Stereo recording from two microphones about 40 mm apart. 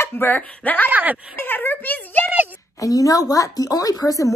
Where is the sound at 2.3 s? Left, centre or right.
Right.